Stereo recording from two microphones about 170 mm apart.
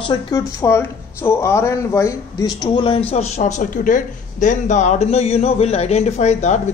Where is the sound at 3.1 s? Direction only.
40° left (ahead or behind).